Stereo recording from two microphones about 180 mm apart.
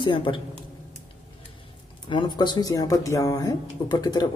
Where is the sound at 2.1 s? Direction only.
25° left (ahead or behind).